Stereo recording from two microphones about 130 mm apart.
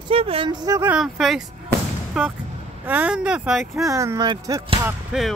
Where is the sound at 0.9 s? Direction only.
Centre (ahead or behind).